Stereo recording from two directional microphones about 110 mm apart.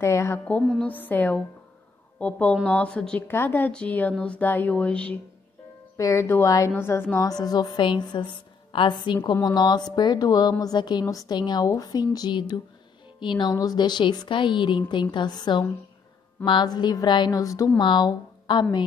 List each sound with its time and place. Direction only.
0.0 s speech: 25° left (ahead or behind)
0.5 s music: 5° left (ahead or behind)
0.9 s a woman's voice: 15° left (ahead or behind)
3.3 s speech: 20° left (ahead or behind)
5.9 s speech: 30° left (ahead or behind)
7.2 s a woman's voice: 35° left (ahead or behind)
17.7 s a woman's voice: 45° left (ahead or behind)